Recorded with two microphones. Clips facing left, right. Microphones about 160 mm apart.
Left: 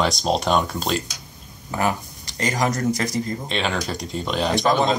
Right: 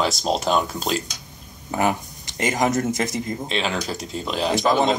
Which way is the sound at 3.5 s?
5° right (ahead or behind).